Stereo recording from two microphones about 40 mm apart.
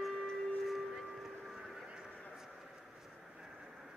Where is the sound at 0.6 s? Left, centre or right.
Centre.